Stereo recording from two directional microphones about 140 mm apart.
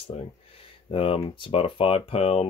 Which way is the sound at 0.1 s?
45° left (ahead or behind).